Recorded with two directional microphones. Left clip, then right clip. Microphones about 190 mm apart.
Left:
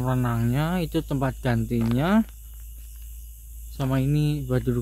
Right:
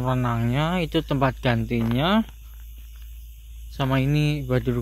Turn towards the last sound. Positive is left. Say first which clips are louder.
# right 2 dB
turn(degrees=20)  # may be behind; listen again after turning